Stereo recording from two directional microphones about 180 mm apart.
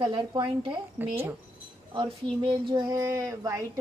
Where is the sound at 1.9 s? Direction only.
25° right (ahead or behind).